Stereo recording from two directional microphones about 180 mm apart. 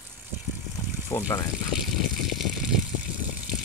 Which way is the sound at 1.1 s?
20° left (ahead or behind).